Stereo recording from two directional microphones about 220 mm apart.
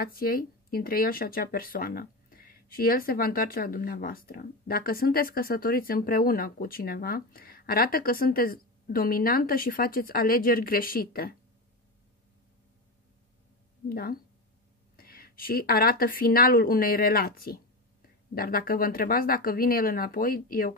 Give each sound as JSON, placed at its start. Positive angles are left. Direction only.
{"t": 0.0, "sound": "speech", "side_deg": 40}
{"t": 13.8, "sound": "speech", "side_deg": 40}